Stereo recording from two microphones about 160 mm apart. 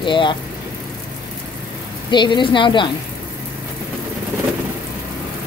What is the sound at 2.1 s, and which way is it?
Speech, 30° left (ahead or behind).